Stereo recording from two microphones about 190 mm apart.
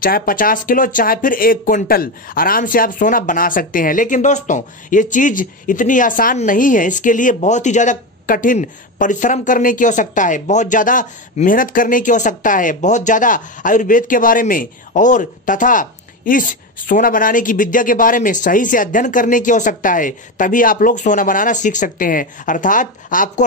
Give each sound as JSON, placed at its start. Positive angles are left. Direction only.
{"t": 0.0, "sound": "speech", "side_deg": 50}